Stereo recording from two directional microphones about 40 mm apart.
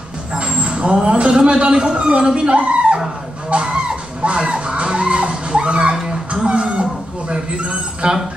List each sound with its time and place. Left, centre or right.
0.3 s vehicle: right
1.1 s speech: right
5.9 s speech: centre